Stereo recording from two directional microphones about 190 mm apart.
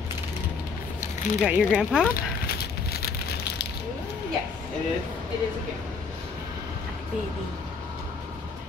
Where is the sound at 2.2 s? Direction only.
55° left (ahead or behind).